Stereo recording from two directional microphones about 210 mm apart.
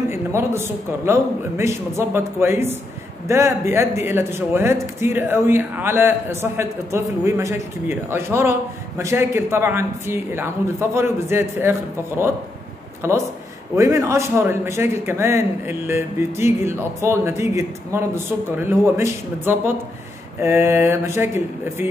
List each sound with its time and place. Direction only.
0.1 s a man's voice: 10° right (ahead or behind)
13.0 s a man's voice: 10° right (ahead or behind)